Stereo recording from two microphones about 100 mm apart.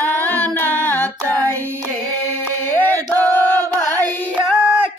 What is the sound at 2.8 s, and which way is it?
Choir, 20° left (ahead or behind).